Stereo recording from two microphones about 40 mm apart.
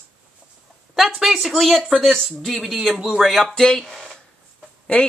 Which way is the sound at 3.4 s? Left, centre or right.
Centre.